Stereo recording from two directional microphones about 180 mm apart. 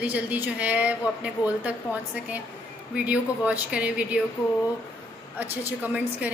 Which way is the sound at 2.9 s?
5° right (ahead or behind).